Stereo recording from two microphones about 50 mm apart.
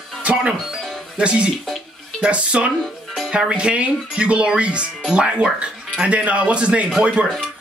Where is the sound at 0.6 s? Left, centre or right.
Centre.